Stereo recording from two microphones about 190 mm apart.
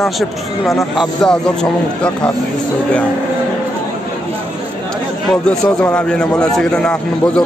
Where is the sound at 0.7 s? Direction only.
Centre (ahead or behind).